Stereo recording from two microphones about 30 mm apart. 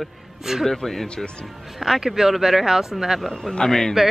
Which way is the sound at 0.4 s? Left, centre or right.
Centre.